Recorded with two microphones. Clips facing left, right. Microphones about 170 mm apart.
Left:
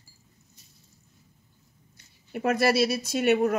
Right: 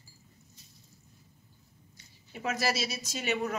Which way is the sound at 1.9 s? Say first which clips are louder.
Left 11 dB; 55° left (ahead or behind).